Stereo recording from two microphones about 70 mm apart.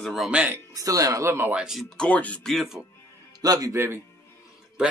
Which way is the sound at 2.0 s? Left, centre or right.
Centre.